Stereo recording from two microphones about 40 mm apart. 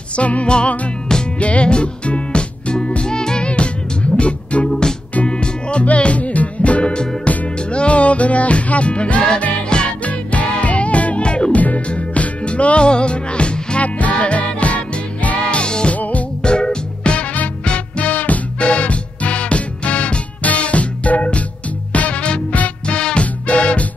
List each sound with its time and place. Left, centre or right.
0.1 s music: left
3.4 s music: left
10.0 s music: left
13.8 s music: left
15.6 s music: left
16.0 s music: left
16.4 s music: left
18.6 s music: left